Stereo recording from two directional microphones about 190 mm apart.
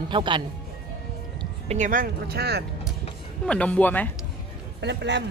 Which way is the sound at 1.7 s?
45° right (ahead or behind).